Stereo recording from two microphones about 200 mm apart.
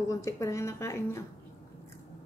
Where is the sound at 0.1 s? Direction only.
15° left (ahead or behind).